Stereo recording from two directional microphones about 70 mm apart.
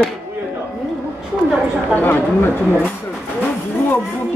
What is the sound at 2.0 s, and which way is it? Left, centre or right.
Speech, left.